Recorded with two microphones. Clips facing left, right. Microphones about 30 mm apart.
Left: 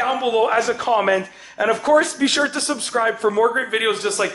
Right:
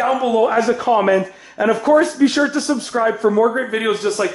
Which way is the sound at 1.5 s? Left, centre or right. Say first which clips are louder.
Right 2 dB; left.